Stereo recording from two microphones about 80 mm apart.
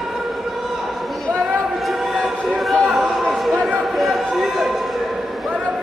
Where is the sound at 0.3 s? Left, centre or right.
Centre.